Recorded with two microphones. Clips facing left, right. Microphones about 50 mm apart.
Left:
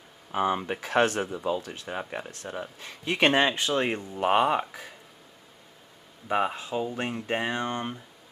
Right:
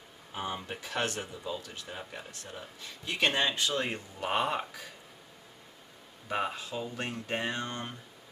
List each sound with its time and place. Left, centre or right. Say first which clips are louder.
0.3 s speech: left 10 dB; left
6.2 s speech: left 6 dB; left